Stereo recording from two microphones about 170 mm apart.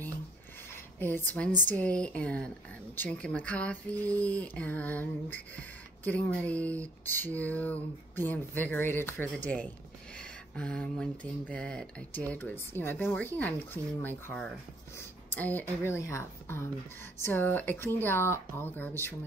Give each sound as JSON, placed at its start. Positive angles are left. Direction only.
{"t": 0.9, "sound": "speech", "side_deg": 10}